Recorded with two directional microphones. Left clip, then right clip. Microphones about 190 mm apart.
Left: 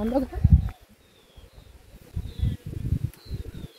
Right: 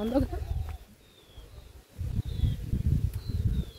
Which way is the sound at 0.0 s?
30° left (ahead or behind).